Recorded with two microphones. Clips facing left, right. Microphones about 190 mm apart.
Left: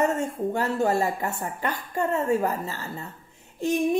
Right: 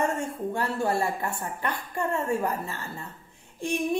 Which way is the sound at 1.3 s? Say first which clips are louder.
Left 2 dB; 40° left (ahead or behind).